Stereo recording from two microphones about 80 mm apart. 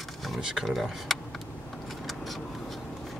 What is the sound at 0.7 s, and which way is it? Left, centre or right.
Speech, centre.